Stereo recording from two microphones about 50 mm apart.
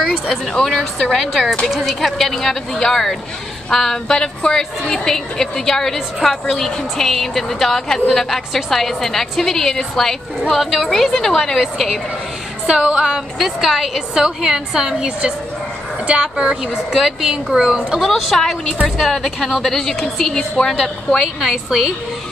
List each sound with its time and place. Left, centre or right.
0.0 s a woman's voice: centre
11.6 s a woman's voice: centre
12.6 s a woman's voice: centre
13.4 s a woman's voice: centre; by 16.5 s right
16.7 s a woman's voice: centre
18.0 s a woman's voice: centre
21.2 s a woman's voice: centre